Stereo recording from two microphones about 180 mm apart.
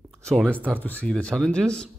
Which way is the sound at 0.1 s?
5° left (ahead or behind).